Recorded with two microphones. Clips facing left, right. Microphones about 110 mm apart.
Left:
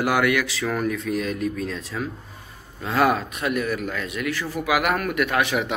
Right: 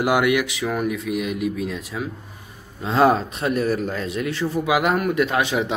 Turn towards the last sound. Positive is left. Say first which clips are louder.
# right 2 dB
turn(degrees=-25)  # may be behind; listen again after turning